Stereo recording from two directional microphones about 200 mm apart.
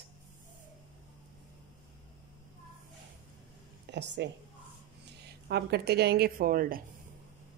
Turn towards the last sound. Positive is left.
turn(degrees=-45)  # may be behind; listen again after turning